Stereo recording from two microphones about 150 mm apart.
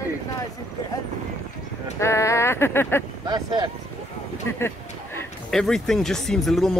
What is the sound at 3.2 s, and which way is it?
Speech, 30° right (ahead or behind).